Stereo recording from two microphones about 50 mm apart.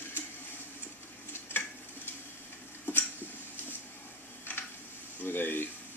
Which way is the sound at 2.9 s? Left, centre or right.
Left.